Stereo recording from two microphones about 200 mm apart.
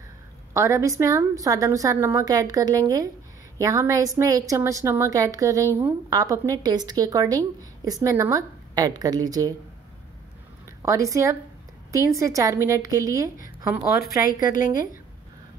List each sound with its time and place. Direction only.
0.5 s a woman's voice: 15° right (ahead or behind)
10.8 s a woman's voice: 15° right (ahead or behind)